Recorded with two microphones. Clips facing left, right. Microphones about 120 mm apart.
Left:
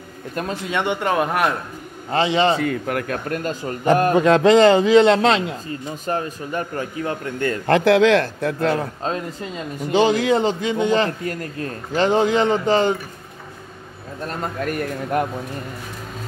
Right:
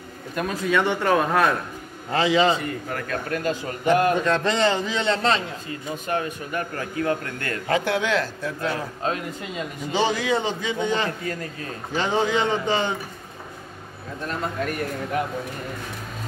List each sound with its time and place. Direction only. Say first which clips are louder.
0.4 s a man's voice: right 1 dB; 25° left (ahead or behind)
2.1 s a man's voice: left 2 dB; 30° left (ahead or behind)
2.5 s speech: left 6 dB; 65° left (ahead or behind)
3.3 s a man's voice: left 1 dB; 40° left (ahead or behind)
4.1 s a man's voice: left 8 dB; 90° left
5.7 s a man's voice: left 2 dB; 35° left (ahead or behind)
7.6 s speech: left 9 dB; 80° left; by 8.8 s 65° left (ahead or behind)
9.0 s a man's voice: left 2 dB; 30° left (ahead or behind)
9.8 s a man's voice: left 6 dB; 50° left (ahead or behind)
14.2 s a man's voice: left 2 dB; 45° left (ahead or behind)